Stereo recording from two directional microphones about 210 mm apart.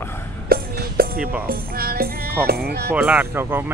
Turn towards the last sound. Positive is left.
turn(degrees=-10)  # may be behind; listen again after turning